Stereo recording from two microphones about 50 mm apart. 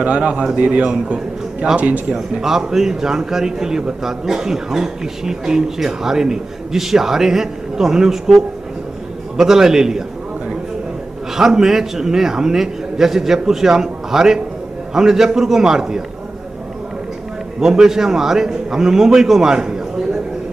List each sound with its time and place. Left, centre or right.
0.0 s a man's voice: right
2.1 s a man's voice: centre
11.3 s a man's voice: centre
17.6 s a man's voice: centre